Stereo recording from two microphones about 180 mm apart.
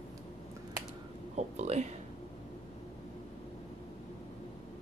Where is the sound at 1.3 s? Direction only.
35° right (ahead or behind).